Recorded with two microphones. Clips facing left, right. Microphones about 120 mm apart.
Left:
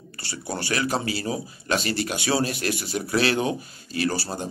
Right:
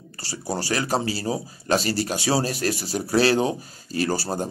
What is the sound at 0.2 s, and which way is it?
Speech, 35° right (ahead or behind).